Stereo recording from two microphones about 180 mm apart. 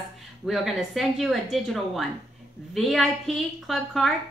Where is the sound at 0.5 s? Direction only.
Centre (ahead or behind).